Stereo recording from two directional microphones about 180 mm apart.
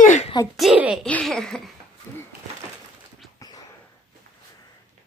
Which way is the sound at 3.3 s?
20° left (ahead or behind).